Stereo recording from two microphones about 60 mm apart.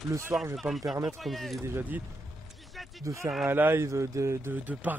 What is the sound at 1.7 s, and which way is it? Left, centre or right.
Speech, right.